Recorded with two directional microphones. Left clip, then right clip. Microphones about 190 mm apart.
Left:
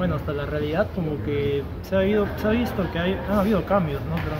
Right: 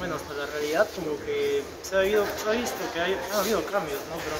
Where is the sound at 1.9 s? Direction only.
30° left (ahead or behind).